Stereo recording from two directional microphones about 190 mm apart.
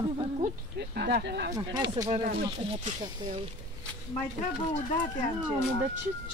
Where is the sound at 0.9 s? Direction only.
60° right (ahead or behind).